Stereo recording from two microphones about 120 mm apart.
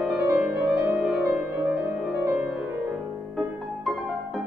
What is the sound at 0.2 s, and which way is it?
Music, 20° right (ahead or behind).